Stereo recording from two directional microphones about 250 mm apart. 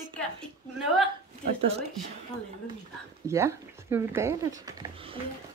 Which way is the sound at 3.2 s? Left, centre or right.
Centre.